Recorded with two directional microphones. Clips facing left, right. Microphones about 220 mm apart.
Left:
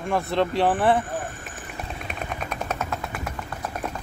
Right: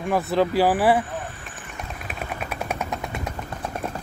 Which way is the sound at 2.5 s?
10° right (ahead or behind).